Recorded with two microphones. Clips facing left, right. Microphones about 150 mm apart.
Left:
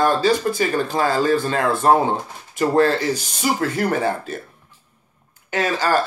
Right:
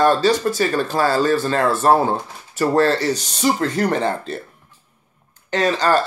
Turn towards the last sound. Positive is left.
turn(degrees=10)  # may be behind; listen again after turning